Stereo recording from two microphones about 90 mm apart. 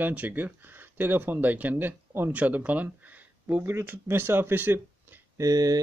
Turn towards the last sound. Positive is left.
turn(degrees=-45)  # may be behind; listen again after turning